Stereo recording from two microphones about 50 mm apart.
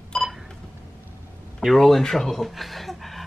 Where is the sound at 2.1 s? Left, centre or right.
Centre.